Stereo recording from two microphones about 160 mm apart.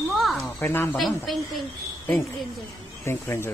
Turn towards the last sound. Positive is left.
turn(degrees=15)  # may be behind; listen again after turning